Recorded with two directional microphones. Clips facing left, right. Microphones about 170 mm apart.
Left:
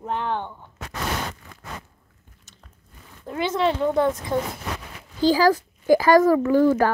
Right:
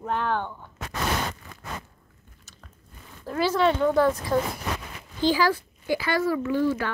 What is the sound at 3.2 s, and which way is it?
Speech, 20° left (ahead or behind).